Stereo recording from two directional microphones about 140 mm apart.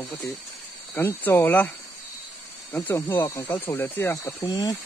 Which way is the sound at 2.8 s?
25° left (ahead or behind).